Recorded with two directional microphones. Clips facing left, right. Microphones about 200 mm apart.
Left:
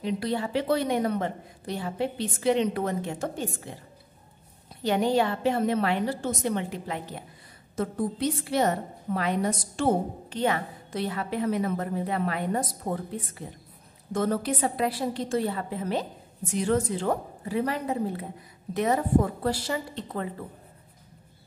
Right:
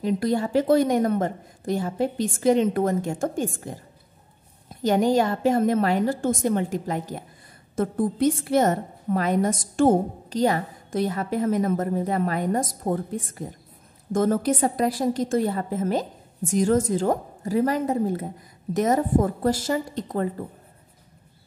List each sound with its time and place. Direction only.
0.0 s a woman's voice: 45° right (ahead or behind)